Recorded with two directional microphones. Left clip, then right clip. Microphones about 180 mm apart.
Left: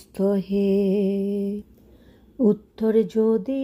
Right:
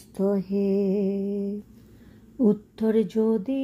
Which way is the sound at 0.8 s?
25° left (ahead or behind).